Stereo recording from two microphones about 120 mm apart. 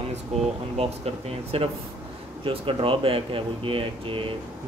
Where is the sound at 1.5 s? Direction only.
50° right (ahead or behind).